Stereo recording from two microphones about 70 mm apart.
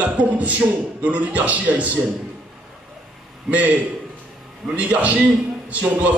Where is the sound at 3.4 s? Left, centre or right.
Right.